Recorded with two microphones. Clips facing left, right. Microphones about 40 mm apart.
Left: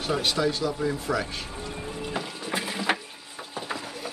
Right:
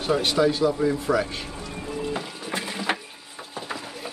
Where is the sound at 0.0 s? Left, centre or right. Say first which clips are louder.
Right 4 dB; centre.